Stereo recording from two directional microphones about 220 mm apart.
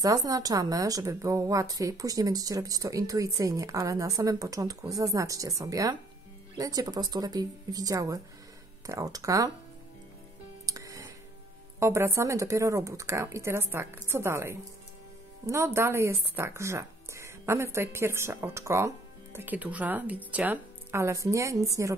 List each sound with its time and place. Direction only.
0.0 s speech: 15° right (ahead or behind)
10.6 s music: 15° right (ahead or behind)
11.8 s speech: 10° right (ahead or behind)